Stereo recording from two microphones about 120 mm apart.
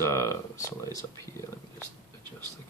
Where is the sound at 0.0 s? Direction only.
25° left (ahead or behind).